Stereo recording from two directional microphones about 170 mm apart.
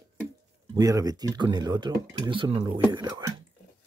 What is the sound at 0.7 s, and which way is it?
Speech, 20° right (ahead or behind).